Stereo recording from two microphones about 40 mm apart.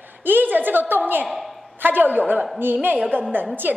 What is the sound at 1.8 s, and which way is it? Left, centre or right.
A woman's voice, right.